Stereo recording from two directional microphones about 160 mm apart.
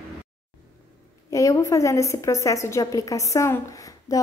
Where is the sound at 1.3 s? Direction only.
20° left (ahead or behind).